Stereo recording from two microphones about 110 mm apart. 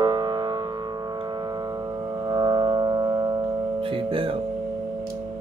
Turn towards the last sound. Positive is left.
turn(degrees=-35)  # may be behind; listen again after turning